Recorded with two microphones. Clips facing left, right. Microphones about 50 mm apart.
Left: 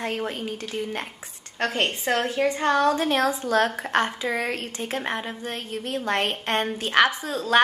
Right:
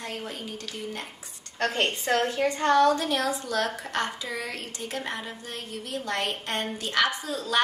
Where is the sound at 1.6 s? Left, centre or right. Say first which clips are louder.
Left 2 dB; left.